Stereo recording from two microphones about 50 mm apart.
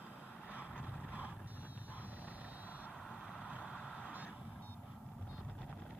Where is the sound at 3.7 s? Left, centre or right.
Centre.